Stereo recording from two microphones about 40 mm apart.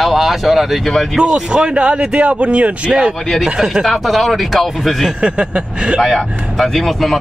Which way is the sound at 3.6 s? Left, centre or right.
Centre.